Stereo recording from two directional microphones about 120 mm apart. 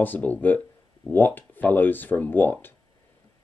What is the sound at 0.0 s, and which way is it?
Speech, 15° left (ahead or behind).